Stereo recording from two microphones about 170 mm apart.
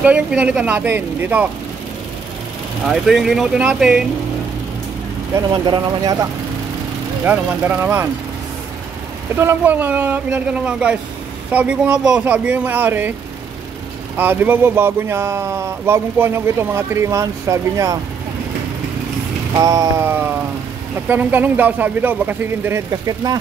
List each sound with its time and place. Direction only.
0.0 s speech: 5° right (ahead or behind)
2.9 s speech: centre (ahead or behind)
5.5 s speech: 25° right (ahead or behind)
7.2 s speech: 10° right (ahead or behind)
9.3 s speech: 15° right (ahead or behind)
14.1 s speech: 10° right (ahead or behind)
19.5 s speech: 20° right (ahead or behind)